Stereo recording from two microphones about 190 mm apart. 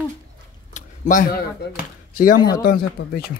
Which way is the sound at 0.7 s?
40° left (ahead or behind).